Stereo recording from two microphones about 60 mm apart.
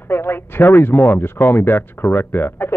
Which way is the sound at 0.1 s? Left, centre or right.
Left.